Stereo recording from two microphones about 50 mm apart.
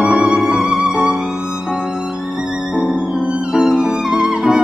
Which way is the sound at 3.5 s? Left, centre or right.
Centre.